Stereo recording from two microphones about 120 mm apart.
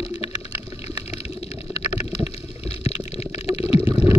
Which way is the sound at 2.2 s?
60° left (ahead or behind).